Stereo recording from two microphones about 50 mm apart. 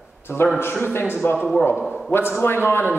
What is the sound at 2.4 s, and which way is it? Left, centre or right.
Speech, left.